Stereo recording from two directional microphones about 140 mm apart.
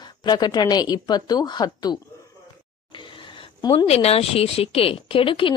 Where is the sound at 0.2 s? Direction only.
30° left (ahead or behind).